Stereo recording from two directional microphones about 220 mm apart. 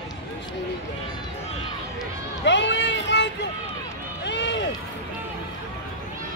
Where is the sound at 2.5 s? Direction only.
55° left (ahead or behind).